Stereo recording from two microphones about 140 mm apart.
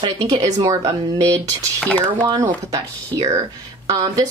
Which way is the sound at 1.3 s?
10° left (ahead or behind).